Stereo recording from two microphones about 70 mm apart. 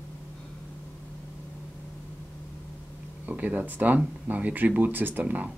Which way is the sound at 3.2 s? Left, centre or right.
Right.